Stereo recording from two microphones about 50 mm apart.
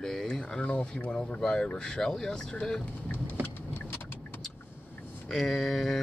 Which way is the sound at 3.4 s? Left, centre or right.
Left.